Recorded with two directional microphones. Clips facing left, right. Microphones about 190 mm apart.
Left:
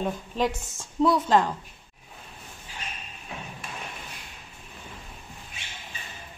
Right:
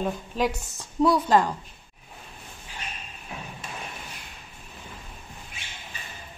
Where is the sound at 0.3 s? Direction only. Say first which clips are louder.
Even; centre (ahead or behind).